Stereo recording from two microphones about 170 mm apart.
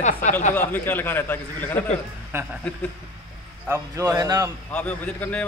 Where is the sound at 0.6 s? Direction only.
10° left (ahead or behind).